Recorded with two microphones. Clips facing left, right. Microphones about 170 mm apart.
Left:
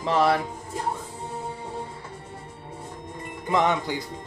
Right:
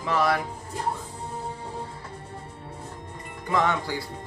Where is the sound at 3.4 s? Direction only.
20° left (ahead or behind).